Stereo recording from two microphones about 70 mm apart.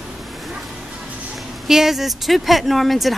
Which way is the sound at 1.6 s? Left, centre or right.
Centre.